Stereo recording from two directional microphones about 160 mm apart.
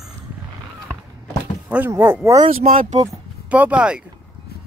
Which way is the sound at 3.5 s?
10° right (ahead or behind).